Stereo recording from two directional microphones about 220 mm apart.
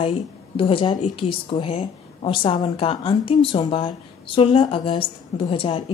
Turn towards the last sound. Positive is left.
turn(degrees=25)  # may be behind; listen again after turning